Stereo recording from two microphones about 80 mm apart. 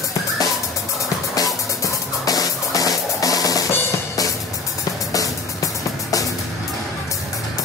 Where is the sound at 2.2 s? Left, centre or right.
Left.